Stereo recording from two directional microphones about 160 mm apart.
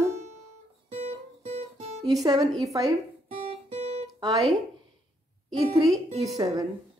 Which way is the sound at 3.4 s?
45° right (ahead or behind).